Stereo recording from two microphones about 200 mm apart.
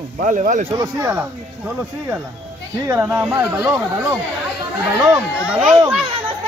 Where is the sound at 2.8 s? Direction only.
15° right (ahead or behind).